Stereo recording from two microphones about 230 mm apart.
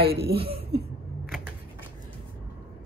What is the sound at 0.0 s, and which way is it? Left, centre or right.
Speech, right.